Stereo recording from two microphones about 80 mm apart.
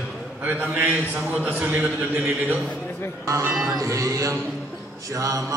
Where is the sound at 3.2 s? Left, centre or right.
Right.